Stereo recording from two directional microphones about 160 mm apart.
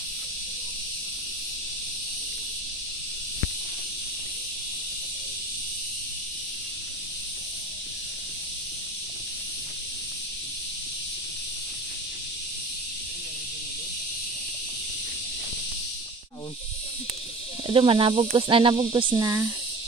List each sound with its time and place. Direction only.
17.6 s cricket: 30° right (ahead or behind)